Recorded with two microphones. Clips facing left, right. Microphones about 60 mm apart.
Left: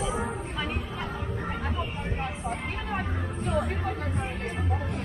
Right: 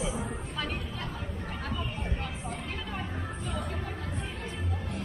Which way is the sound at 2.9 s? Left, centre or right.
Left.